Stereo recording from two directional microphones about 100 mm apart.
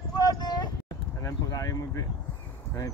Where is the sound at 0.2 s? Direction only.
40° left (ahead or behind).